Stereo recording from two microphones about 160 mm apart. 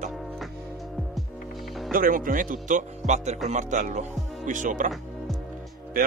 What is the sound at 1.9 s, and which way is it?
Speech, 60° right (ahead or behind).